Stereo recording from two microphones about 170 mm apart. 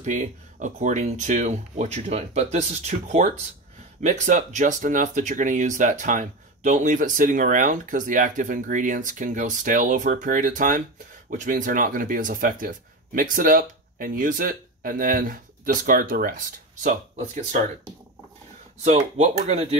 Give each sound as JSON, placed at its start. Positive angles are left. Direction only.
{"t": 0.0, "sound": "speech", "side_deg": -45}
{"t": 18.9, "sound": "speech", "side_deg": -40}